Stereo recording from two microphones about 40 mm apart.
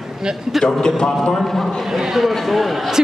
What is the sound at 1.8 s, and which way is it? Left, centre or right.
A man's voice, centre.